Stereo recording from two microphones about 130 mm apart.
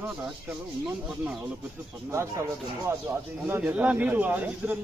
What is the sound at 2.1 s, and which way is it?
Speech, 20° right (ahead or behind).